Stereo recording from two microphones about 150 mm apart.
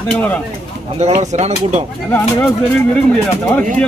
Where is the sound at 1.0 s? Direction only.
50° right (ahead or behind).